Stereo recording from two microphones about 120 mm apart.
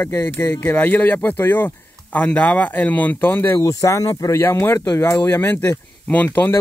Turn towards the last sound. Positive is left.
turn(degrees=15)  # may be behind; listen again after turning